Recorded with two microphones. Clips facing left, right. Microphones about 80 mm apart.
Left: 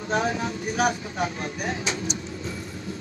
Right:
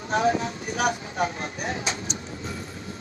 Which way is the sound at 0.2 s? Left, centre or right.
Left.